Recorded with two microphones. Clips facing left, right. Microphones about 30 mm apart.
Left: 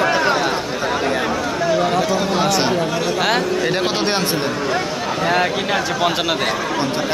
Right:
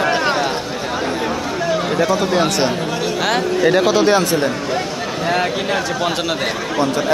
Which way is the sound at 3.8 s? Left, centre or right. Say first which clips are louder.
Right 5 dB; left.